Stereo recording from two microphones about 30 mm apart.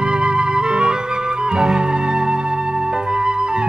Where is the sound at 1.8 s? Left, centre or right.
Right.